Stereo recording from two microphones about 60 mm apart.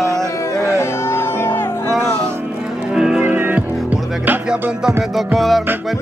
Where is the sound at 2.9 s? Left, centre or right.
Centre.